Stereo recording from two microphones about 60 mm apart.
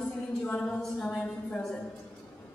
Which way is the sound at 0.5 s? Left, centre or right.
Centre.